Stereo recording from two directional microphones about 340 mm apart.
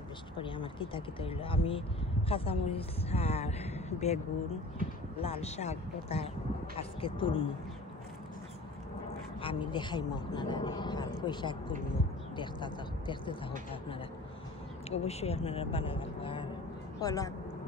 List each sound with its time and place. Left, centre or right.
0.4 s a woman's voice: centre
5.2 s speech: centre
9.4 s speech: centre
14.9 s speech: centre